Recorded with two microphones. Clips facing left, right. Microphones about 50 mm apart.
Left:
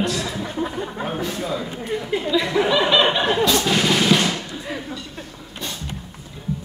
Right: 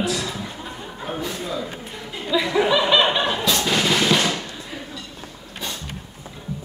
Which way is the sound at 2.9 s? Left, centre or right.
Centre.